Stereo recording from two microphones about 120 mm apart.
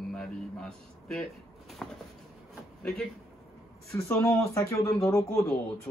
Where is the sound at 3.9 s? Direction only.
25° left (ahead or behind).